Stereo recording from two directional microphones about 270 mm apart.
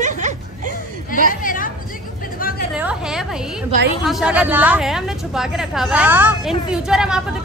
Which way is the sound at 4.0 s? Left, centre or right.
Centre.